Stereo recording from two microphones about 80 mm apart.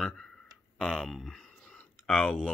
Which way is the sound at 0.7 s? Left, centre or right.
Centre.